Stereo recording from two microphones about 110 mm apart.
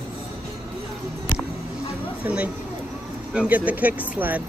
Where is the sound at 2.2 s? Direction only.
10° right (ahead or behind).